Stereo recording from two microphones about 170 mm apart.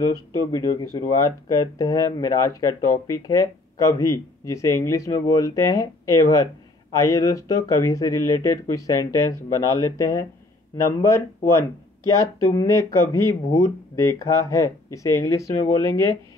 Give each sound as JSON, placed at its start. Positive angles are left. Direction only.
{"t": 0.0, "sound": "speech", "side_deg": 20}